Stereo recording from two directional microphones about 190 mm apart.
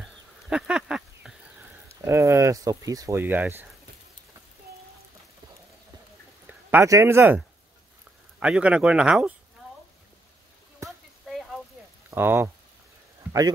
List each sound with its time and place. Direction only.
0.5 s a sound: 5° right (ahead or behind)
2.0 s speech: 15° right (ahead or behind)
6.7 s speech: 15° right (ahead or behind)
10.8 s a sound: 15° right (ahead or behind)
11.3 s vehicle: centre (ahead or behind)
12.1 s speech: 15° right (ahead or behind)